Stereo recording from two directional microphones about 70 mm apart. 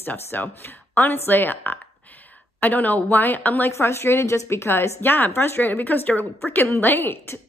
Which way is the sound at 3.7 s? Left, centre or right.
Left.